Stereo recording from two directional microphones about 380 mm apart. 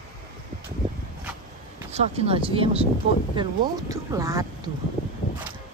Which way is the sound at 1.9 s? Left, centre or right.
Centre.